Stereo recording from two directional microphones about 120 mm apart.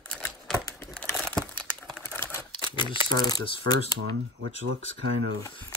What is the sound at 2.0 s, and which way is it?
Typewriter, 20° left (ahead or behind).